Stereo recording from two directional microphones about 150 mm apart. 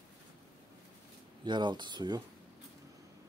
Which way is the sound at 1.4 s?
30° right (ahead or behind).